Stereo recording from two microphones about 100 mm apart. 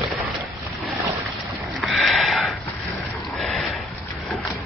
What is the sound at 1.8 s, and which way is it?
Sniff, centre (ahead or behind).